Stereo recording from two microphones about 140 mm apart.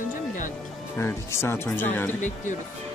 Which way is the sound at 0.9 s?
20° left (ahead or behind).